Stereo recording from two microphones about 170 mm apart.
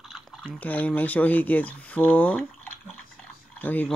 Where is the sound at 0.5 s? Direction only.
10° left (ahead or behind).